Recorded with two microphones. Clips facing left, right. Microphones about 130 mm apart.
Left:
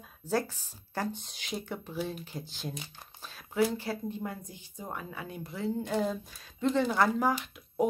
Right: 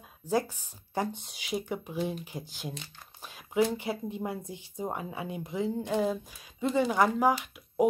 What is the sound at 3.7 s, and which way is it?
Speech, 20° right (ahead or behind).